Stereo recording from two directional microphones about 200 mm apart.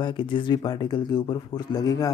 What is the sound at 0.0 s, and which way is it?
Speech, 25° left (ahead or behind).